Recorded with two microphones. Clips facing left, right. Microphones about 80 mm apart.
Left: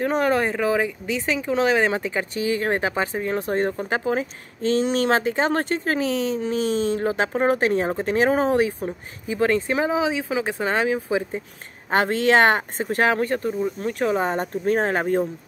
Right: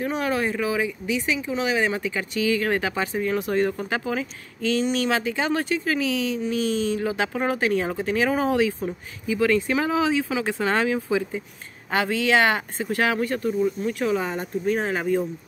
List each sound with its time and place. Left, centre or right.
0.0 s speech: left
11.9 s speech: left